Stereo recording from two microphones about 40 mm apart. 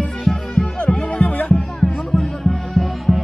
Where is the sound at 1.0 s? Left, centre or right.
Left.